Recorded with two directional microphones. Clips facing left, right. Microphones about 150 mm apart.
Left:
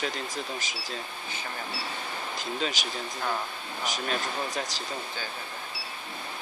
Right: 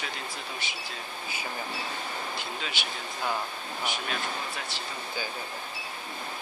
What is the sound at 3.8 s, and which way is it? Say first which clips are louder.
Speech: left 2 dB; 40° left (ahead or behind).